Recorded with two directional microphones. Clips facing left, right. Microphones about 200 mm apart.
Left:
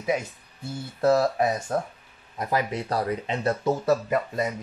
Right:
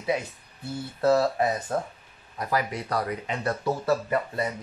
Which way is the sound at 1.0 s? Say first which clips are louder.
Left 1 dB; 15° left (ahead or behind).